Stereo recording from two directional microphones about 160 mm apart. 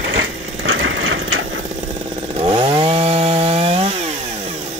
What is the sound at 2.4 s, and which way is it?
Chainsaw, 35° right (ahead or behind).